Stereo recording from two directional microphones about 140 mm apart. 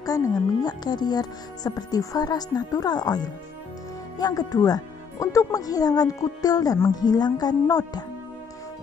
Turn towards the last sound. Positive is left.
turn(degrees=30)  # may be behind; listen again after turning